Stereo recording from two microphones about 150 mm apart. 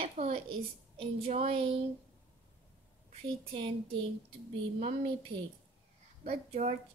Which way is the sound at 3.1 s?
40° right (ahead or behind).